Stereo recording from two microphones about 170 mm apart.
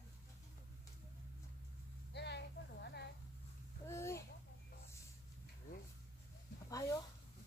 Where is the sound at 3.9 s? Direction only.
15° left (ahead or behind).